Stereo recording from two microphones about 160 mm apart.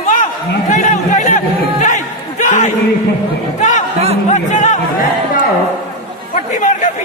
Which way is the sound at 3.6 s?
50° left (ahead or behind).